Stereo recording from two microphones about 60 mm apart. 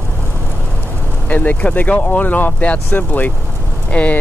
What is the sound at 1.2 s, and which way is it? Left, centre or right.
Speech, left.